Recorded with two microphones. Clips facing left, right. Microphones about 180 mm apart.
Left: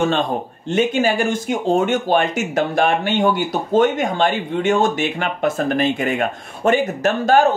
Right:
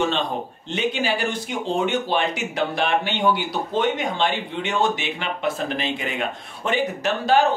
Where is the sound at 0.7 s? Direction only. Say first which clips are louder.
Left 7 dB; 45° left (ahead or behind).